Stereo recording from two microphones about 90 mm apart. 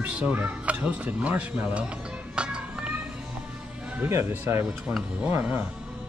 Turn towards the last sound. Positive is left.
turn(degrees=-20)  # may be behind; listen again after turning